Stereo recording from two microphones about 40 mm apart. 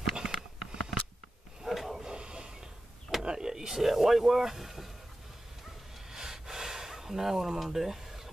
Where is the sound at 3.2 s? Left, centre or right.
Centre.